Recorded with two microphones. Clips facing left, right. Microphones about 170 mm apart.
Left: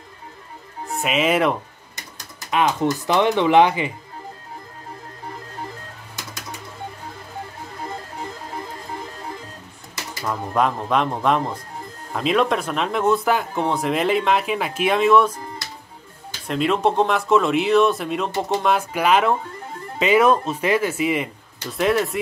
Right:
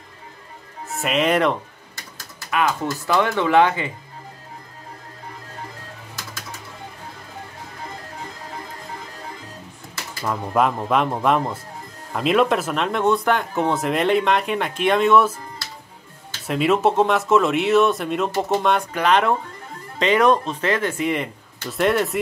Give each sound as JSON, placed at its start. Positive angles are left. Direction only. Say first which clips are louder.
{"t": 0.8, "sound": "speech", "louder": "even", "side_deg": 0}
{"t": 2.0, "sound": "speech", "louder": "left 1 dB", "side_deg": 20}
{"t": 10.2, "sound": "speech", "louder": "right 1 dB", "side_deg": 0}
{"t": 16.4, "sound": "speech", "louder": "right 1 dB", "side_deg": -5}